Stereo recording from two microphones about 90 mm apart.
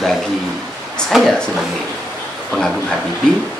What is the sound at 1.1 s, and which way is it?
Speech, centre (ahead or behind).